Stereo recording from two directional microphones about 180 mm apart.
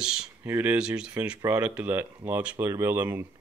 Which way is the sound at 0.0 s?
5° right (ahead or behind).